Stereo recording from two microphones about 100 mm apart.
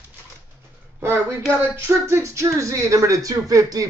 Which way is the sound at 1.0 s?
25° right (ahead or behind).